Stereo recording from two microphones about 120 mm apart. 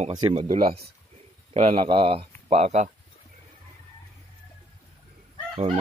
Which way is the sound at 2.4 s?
65° right (ahead or behind).